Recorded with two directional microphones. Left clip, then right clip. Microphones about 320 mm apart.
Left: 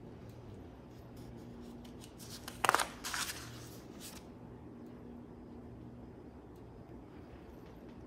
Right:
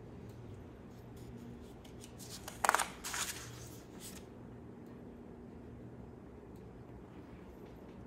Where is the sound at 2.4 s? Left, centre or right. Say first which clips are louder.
Left 1 dB; centre.